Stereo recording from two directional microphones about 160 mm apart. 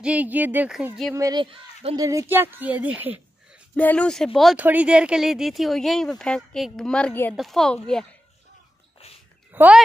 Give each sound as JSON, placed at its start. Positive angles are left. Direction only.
{"t": 0.0, "sound": "speech", "side_deg": -10}
{"t": 1.1, "sound": "a child's voice", "side_deg": -20}
{"t": 1.4, "sound": "speech", "side_deg": -35}
{"t": 2.0, "sound": "a woman's voice", "side_deg": -20}
{"t": 3.7, "sound": "speech", "side_deg": 10}
{"t": 4.6, "sound": "speech", "side_deg": -10}
{"t": 9.5, "sound": "speech", "side_deg": -10}